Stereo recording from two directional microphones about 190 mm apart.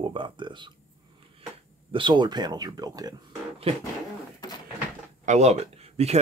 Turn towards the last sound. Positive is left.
turn(degrees=-35)  # may be behind; listen again after turning